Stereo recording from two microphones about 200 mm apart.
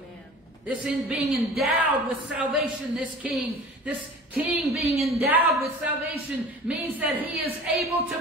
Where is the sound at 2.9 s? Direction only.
Centre (ahead or behind).